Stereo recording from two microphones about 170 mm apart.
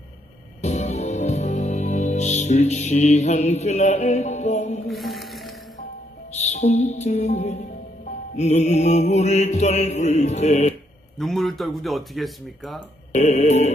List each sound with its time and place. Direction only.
0.6 s music: 40° left (ahead or behind)
4.8 s music: centre (ahead or behind)
6.3 s mantra: 40° left (ahead or behind)
11.1 s speech: centre (ahead or behind)
13.1 s mantra: 40° left (ahead or behind)